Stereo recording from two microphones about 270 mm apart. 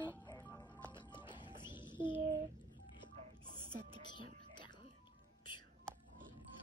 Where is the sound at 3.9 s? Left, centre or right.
Centre.